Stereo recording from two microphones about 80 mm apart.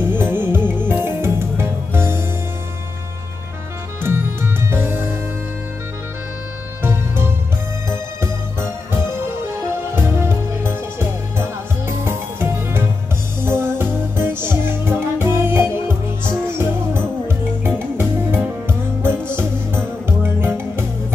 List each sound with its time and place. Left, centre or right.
0.1 s music: right
4.0 s music: right
6.8 s music: right